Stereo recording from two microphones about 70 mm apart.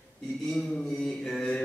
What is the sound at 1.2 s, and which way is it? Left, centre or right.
Speech, centre.